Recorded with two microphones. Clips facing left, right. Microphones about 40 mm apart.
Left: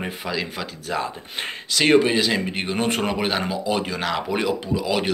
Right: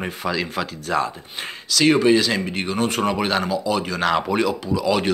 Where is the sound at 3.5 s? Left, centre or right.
Left.